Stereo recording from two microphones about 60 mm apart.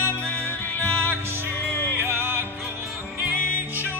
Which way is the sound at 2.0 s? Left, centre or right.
Right.